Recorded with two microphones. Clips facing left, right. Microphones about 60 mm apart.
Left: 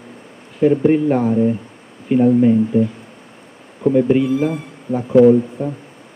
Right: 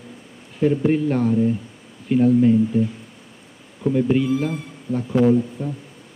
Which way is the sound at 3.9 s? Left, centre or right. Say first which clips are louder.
Left 4 dB; centre.